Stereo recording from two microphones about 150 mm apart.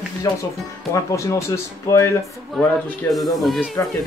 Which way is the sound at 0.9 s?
20° left (ahead or behind).